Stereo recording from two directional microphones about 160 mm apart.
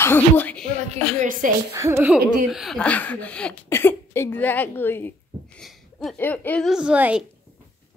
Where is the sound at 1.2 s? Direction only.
55° right (ahead or behind).